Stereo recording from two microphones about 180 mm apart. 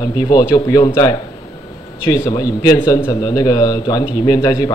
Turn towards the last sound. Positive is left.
turn(degrees=20)  # may be behind; listen again after turning